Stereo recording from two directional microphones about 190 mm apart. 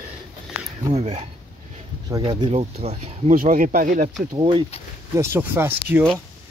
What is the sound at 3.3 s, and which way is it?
Speech, 45° right (ahead or behind).